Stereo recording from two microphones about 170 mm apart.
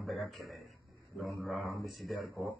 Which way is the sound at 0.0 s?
Centre (ahead or behind).